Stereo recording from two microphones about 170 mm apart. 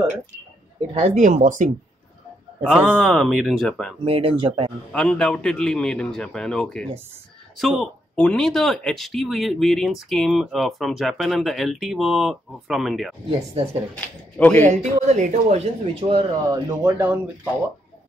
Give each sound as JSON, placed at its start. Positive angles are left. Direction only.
{"t": 0.9, "sound": "speech", "side_deg": -40}
{"t": 2.8, "sound": "speech", "side_deg": 0}
{"t": 4.0, "sound": "speech", "side_deg": -35}
{"t": 4.9, "sound": "speech", "side_deg": 5}
{"t": 14.6, "sound": "speech", "side_deg": -40}
{"t": 16.0, "sound": "speech", "side_deg": -30}
{"t": 16.6, "sound": "speech", "side_deg": -15}